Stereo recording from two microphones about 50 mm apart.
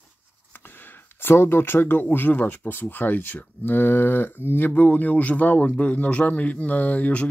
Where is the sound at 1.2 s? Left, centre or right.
Left.